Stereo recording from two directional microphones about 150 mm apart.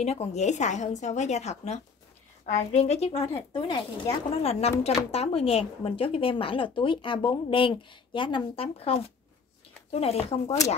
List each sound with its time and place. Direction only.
0.0 s a woman's voice: 45° left (ahead or behind)
4.4 s a woman's voice: 45° left (ahead or behind)